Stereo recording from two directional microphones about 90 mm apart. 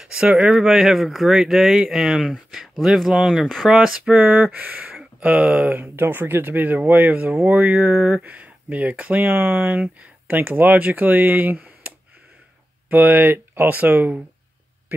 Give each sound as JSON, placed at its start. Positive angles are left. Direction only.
{"t": 0.0, "sound": "speech", "side_deg": -10}
{"t": 4.1, "sound": "speech", "side_deg": -20}
{"t": 12.9, "sound": "speech", "side_deg": -20}
{"t": 14.9, "sound": "a sound", "side_deg": -25}